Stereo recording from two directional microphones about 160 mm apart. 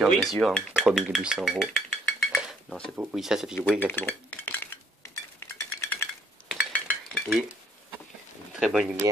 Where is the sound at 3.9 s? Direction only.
15° left (ahead or behind).